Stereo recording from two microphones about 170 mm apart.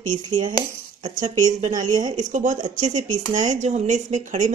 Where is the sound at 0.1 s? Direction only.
25° right (ahead or behind).